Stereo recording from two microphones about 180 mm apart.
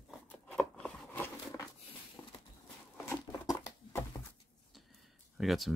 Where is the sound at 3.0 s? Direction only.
15° left (ahead or behind).